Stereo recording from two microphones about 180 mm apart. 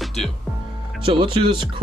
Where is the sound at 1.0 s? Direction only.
30° right (ahead or behind).